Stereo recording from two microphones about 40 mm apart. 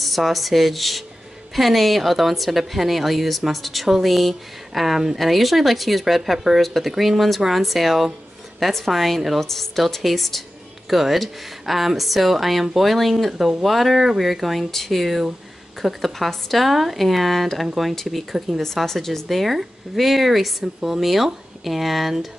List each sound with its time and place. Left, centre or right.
0.0 s a woman's voice: centre
18.9 s a woman's voice: centre